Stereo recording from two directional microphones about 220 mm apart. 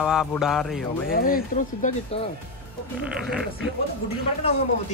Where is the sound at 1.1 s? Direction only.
40° left (ahead or behind).